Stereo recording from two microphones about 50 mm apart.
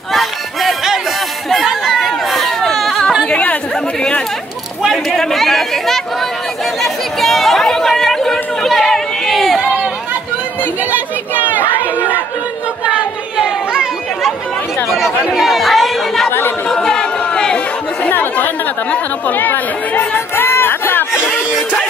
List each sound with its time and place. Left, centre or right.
0.1 s music: centre
1.5 s chatter: centre
3.3 s chatter: left
4.9 s chatter: centre
10.6 s chatter: right
12.8 s a sound: centre
14.9 s chatter: centre
16.3 s chatter: left
16.6 s chatter: centre
18.0 s speech: left
20.3 s a sound: left